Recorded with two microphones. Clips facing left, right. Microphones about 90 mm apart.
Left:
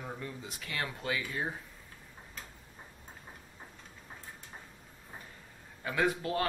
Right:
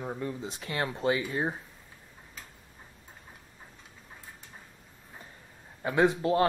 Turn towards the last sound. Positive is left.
turn(degrees=-30)  # may be behind; listen again after turning